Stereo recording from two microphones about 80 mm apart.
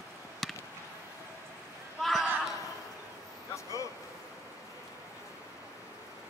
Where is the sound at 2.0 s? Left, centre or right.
Centre.